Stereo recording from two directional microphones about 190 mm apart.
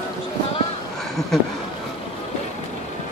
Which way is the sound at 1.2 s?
Centre (ahead or behind).